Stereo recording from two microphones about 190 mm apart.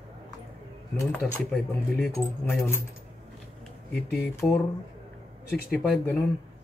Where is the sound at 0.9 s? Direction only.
15° left (ahead or behind).